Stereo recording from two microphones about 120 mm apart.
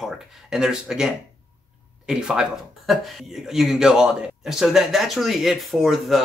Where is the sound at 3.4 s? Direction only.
5° right (ahead or behind).